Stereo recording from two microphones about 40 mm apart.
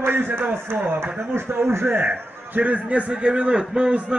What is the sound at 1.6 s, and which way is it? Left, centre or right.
Speech, right.